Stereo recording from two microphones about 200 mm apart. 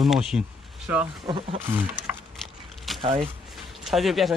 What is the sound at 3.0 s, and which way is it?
Speech, 30° right (ahead or behind).